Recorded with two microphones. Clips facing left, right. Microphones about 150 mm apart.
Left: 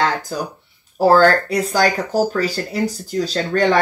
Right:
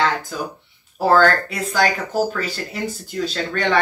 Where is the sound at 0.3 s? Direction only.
40° left (ahead or behind).